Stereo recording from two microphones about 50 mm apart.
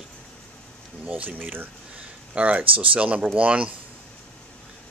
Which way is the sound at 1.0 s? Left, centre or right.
Right.